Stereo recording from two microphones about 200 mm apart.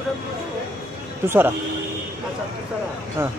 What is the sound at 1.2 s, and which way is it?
Speech, 10° right (ahead or behind).